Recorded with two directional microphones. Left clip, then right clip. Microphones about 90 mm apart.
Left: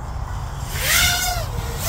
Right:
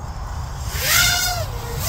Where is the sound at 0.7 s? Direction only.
45° right (ahead or behind).